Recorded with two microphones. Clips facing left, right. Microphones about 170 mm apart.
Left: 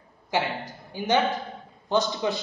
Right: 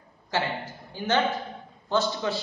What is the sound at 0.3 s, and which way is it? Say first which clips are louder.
A man's voice: left 2 dB; 15° left (ahead or behind).